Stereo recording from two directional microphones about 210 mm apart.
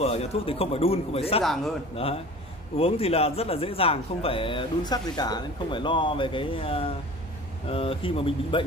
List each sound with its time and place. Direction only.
0.0 s speech: 30° left (ahead or behind)
1.4 s a man's voice: centre (ahead or behind)
2.8 s speech: 30° left (ahead or behind)